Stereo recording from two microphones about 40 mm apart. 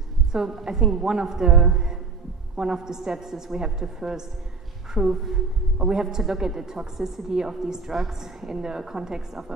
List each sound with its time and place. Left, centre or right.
0.3 s a woman's voice: centre